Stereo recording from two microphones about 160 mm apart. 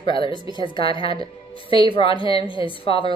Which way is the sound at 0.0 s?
30° left (ahead or behind).